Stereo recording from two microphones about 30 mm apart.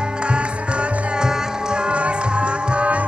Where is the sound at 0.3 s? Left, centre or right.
Right.